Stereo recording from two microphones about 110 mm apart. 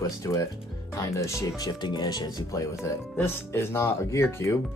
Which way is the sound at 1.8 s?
40° left (ahead or behind).